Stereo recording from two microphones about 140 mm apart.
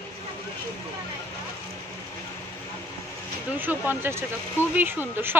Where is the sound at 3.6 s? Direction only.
15° right (ahead or behind).